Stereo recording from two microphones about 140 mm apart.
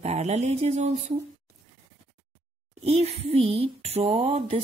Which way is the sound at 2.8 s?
50° right (ahead or behind).